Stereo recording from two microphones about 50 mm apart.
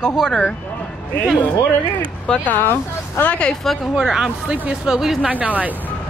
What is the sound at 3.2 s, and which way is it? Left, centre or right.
Speech, left.